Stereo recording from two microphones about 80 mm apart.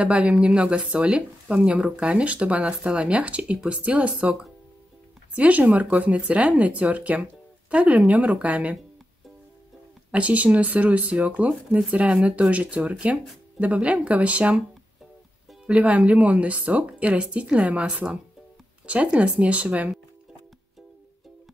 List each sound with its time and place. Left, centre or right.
0.0 s speech: centre
10.1 s speech: centre
15.6 s speech: centre